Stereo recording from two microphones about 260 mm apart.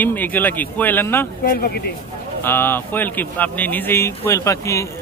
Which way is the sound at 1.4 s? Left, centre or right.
Left.